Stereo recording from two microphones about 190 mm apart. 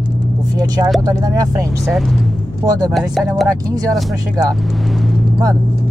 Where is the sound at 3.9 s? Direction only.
Centre (ahead or behind).